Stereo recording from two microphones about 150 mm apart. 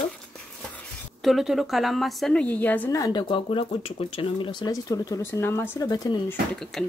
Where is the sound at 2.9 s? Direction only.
25° left (ahead or behind).